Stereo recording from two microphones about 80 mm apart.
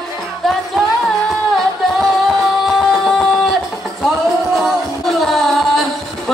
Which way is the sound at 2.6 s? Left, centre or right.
Centre.